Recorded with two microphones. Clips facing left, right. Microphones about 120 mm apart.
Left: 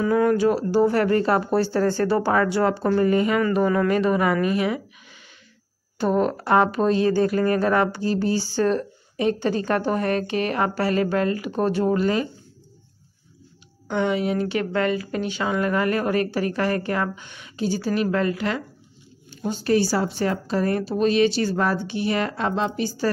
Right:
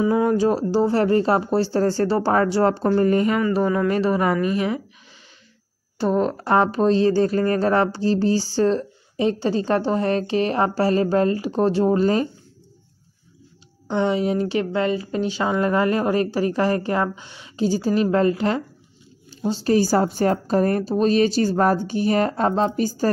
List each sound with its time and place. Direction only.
0.0 s speech: 20° right (ahead or behind)
0.4 s speech: 35° right (ahead or behind)
6.1 s speech: 20° right (ahead or behind)
6.4 s speech: 30° right (ahead or behind)
13.8 s speech: 30° right (ahead or behind)